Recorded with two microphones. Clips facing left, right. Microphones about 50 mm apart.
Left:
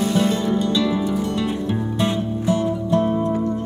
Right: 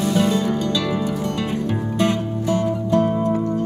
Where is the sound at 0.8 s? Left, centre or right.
Right.